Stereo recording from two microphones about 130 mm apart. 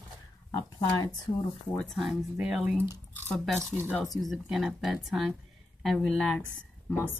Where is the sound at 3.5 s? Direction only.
15° right (ahead or behind).